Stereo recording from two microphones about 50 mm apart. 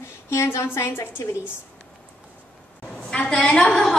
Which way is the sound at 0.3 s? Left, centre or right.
Left.